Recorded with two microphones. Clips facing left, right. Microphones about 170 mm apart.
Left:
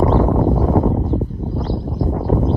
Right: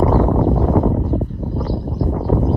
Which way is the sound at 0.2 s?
Centre (ahead or behind).